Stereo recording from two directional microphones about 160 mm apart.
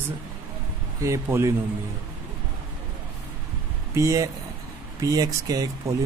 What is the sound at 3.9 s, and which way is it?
Speech, 20° right (ahead or behind).